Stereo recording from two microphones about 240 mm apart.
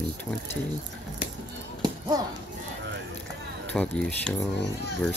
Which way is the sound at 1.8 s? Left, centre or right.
Centre.